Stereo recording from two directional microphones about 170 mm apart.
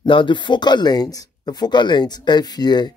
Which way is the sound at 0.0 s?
30° left (ahead or behind).